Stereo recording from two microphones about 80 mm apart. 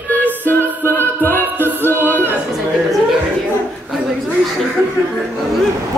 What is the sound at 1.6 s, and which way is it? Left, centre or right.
Music, right.